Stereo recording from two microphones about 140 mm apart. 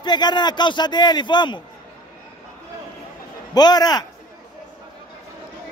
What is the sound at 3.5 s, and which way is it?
Speech, 30° left (ahead or behind).